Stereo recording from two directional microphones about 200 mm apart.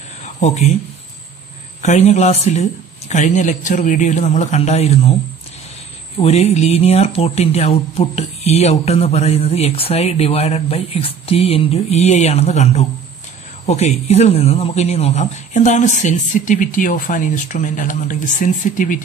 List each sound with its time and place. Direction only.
0.2 s a sound: 35° left (ahead or behind)
1.8 s speech: 35° left (ahead or behind)
6.1 s speech: 30° left (ahead or behind)